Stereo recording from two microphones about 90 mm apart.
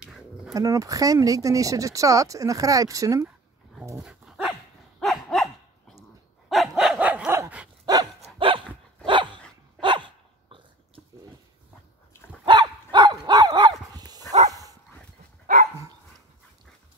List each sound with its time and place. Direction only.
0.6 s speech: 40° right (ahead or behind)
4.0 s dog: 5° right (ahead or behind)
7.8 s dog: 50° right (ahead or behind)
8.4 s dog: 70° right (ahead or behind)
12.4 s dog: 55° right (ahead or behind)